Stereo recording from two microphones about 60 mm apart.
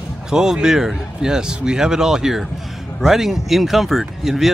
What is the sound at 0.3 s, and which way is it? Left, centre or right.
Speech, centre.